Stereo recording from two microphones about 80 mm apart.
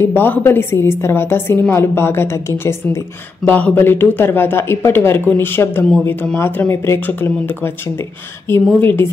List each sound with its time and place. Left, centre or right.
0.0 s a woman's voice: left
3.4 s a woman's voice: left